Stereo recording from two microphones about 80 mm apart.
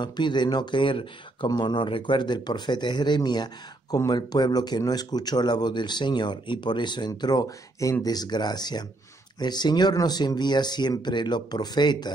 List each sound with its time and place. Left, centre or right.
0.0 s speech: left
3.9 s speech: left